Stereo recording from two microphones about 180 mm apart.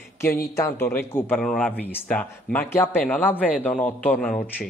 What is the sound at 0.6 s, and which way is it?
A man's voice, 15° left (ahead or behind).